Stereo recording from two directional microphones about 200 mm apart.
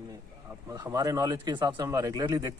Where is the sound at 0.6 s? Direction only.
15° right (ahead or behind).